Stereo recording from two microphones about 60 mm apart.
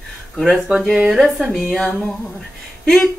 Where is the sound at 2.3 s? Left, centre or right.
Centre.